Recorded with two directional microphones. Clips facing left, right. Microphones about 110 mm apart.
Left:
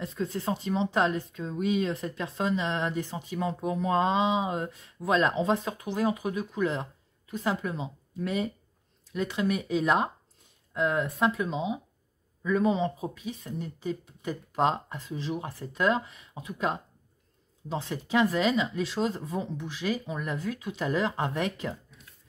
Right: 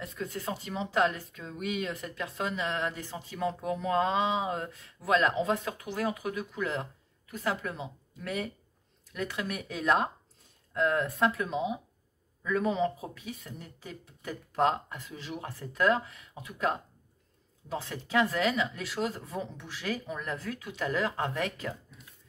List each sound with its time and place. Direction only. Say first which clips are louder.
0.0 s speech: left 5 dB; 30° left (ahead or behind)